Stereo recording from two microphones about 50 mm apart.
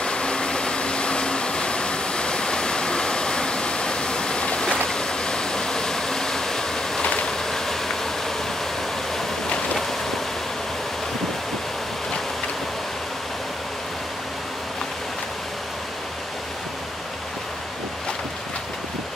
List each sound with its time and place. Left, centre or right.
0.0 s vehicle: centre
7.4 s vehicle: centre